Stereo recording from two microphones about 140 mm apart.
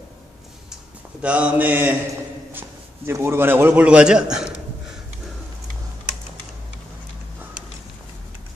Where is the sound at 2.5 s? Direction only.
15° right (ahead or behind).